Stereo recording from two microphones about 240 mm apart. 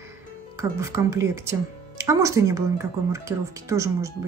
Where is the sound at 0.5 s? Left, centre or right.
Centre.